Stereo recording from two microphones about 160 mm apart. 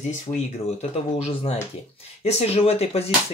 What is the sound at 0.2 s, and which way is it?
Speech, 45° left (ahead or behind).